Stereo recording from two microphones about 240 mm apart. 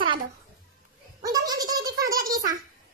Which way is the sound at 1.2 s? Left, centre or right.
Centre.